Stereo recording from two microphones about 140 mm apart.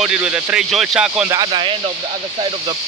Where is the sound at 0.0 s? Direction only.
10° right (ahead or behind).